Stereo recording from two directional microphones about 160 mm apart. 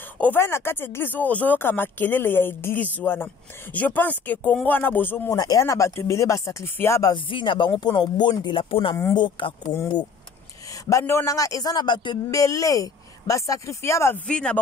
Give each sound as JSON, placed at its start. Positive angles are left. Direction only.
{"t": 0.2, "sound": "a man's voice", "side_deg": 15}